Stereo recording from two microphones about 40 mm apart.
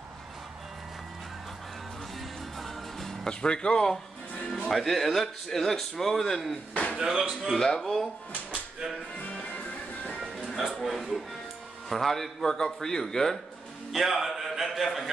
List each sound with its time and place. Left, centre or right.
3.3 s speech: left
4.6 s a man's voice: centre
6.7 s a sound: left
7.0 s speech: centre
7.5 s a man's voice: centre
10.8 s a man's voice: centre
13.9 s a man's voice: centre